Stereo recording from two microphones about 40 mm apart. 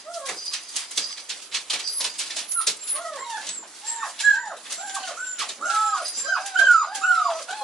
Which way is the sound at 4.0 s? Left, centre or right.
Centre.